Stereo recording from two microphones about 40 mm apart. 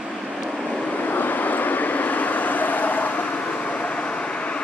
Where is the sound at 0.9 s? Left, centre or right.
Left.